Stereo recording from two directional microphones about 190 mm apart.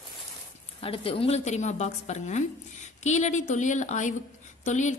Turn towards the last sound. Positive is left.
turn(degrees=40)  # may be behind; listen again after turning